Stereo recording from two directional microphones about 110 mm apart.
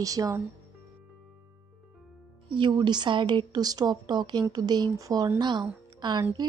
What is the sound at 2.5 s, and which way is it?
A woman's voice, 45° right (ahead or behind).